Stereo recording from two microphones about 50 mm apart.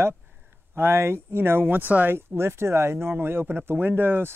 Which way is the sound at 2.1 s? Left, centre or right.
Right.